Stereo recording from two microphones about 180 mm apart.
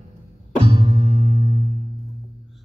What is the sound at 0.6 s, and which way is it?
Music, 30° right (ahead or behind).